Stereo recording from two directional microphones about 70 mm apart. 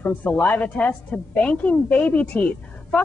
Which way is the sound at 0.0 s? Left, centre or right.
Left.